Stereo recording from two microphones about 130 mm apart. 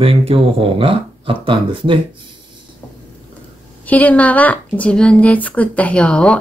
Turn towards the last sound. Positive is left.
turn(degrees=10)  # may be behind; listen again after turning